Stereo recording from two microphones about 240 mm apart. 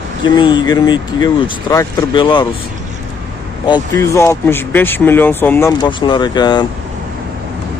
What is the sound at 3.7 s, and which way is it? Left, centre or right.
Speech, centre.